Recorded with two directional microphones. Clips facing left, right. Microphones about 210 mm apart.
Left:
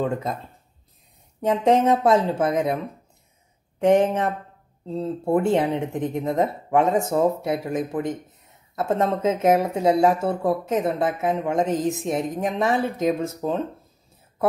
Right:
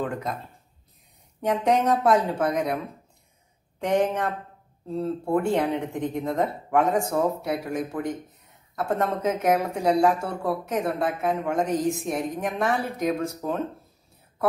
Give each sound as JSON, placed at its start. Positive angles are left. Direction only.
{"t": 1.4, "sound": "speech", "side_deg": 25}
{"t": 3.8, "sound": "speech", "side_deg": 25}